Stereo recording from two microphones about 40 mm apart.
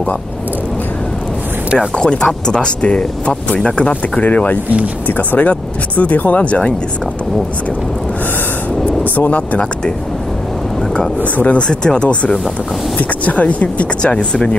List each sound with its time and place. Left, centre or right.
2.0 s speech: left
4.2 s speech: left
11.3 s speech: left
11.6 s speech: centre; by 13.8 s left
14.0 s speech: left